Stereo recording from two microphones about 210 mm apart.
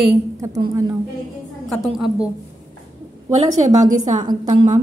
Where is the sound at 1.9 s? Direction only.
5° right (ahead or behind).